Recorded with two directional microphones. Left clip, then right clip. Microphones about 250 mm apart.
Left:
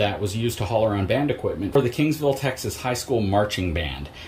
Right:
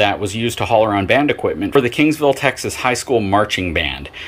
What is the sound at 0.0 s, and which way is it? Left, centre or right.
Speech, centre.